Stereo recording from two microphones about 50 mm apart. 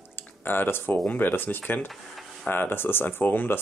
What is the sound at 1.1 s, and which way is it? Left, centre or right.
Speech, left.